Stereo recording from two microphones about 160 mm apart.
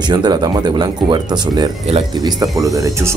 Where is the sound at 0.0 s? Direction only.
25° right (ahead or behind).